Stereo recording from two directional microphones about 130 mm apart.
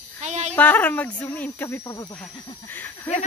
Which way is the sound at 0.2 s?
60° right (ahead or behind).